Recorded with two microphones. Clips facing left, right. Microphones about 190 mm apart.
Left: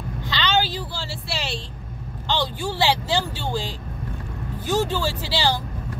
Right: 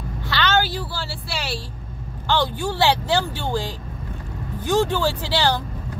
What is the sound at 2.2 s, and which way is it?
Speech, 10° left (ahead or behind).